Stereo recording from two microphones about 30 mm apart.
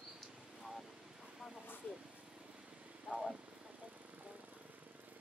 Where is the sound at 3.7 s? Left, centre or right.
Right.